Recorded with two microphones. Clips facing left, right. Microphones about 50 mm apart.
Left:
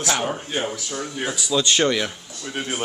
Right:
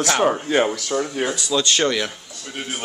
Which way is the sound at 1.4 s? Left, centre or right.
Centre.